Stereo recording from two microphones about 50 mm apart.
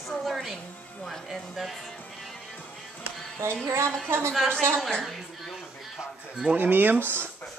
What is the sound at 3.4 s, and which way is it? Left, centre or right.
Speech, right.